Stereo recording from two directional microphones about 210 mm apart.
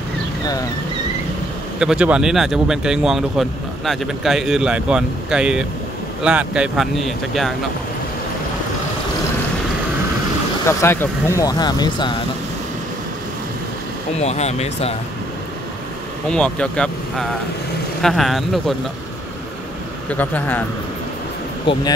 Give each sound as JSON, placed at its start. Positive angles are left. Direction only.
{"t": 1.8, "sound": "speech", "side_deg": -5}
{"t": 10.7, "sound": "speech", "side_deg": 10}
{"t": 14.1, "sound": "speech", "side_deg": 30}
{"t": 16.3, "sound": "speech", "side_deg": 5}
{"t": 20.1, "sound": "speech", "side_deg": 10}
{"t": 21.7, "sound": "speech", "side_deg": 25}